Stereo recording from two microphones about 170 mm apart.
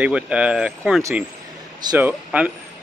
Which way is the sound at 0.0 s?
5° right (ahead or behind).